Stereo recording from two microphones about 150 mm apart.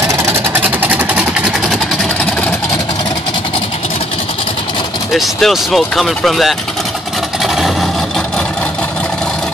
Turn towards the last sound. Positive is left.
turn(degrees=0)  # may be behind; listen again after turning